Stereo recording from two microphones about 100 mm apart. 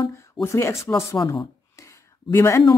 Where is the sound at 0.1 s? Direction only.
25° left (ahead or behind).